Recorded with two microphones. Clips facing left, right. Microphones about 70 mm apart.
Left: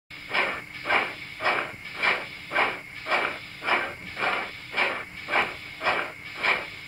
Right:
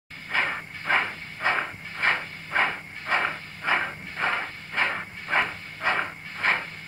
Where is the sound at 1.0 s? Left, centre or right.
Right.